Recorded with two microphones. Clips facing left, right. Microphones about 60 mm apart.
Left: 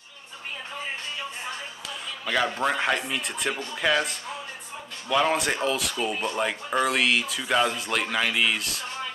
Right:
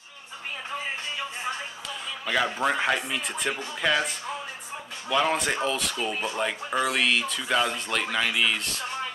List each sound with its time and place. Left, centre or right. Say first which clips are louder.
2.2 s speech: even; centre